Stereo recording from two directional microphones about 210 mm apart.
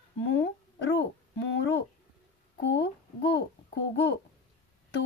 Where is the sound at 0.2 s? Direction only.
60° left (ahead or behind).